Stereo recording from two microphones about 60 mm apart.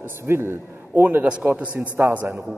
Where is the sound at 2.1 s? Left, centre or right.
Right.